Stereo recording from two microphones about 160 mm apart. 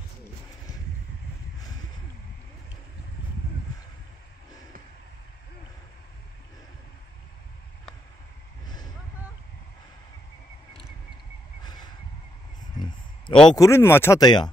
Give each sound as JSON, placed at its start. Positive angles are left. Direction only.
{"t": 8.6, "sound": "vehicle", "side_deg": 25}
{"t": 11.6, "sound": "a sound", "side_deg": 25}
{"t": 13.3, "sound": "speech", "side_deg": 5}
{"t": 13.6, "sound": "speech", "side_deg": 15}
{"t": 14.2, "sound": "speech", "side_deg": 25}